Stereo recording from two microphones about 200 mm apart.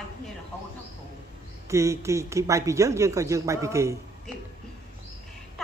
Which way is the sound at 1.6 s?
15° right (ahead or behind).